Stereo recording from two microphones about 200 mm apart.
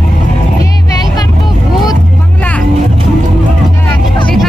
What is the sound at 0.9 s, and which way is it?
Vehicle, 20° left (ahead or behind).